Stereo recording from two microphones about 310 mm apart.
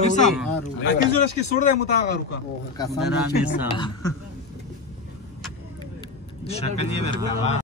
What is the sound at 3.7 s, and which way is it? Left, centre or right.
Speech, centre.